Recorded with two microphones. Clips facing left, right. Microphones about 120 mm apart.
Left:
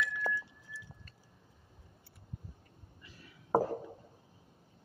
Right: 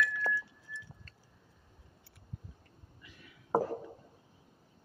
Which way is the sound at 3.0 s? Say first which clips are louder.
Even; 35° left (ahead or behind).